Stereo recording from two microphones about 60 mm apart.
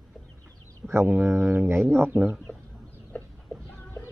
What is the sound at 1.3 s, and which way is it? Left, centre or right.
Speech, right.